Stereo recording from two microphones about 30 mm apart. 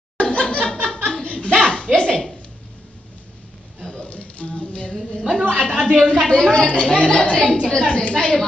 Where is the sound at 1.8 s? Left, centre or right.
Left.